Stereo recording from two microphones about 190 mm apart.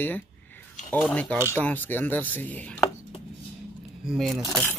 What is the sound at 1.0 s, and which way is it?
Speech, 5° left (ahead or behind).